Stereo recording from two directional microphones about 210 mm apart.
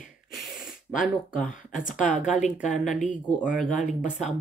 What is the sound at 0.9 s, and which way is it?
Speech, 40° left (ahead or behind).